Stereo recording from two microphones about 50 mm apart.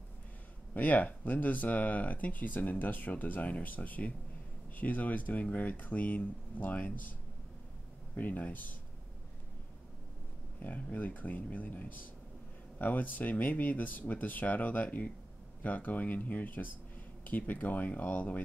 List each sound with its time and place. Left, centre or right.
0.7 s speech: left
8.2 s speech: left
10.6 s speech: left